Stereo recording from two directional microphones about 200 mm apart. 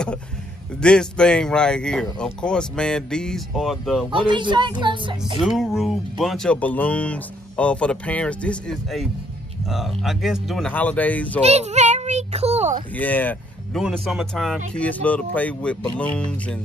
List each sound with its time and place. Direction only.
0.7 s speech: 5° left (ahead or behind)
4.1 s speech: 25° right (ahead or behind)
5.4 s speech: centre (ahead or behind)
11.4 s a child's voice: 35° right (ahead or behind)
12.9 s speech: 10° left (ahead or behind)